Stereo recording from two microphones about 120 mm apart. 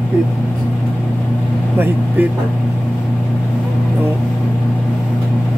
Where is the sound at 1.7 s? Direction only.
15° right (ahead or behind).